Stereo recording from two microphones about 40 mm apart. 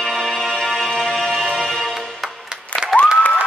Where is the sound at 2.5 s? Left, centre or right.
Right.